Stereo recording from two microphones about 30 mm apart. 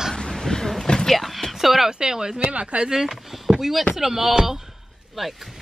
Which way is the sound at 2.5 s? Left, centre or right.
Right.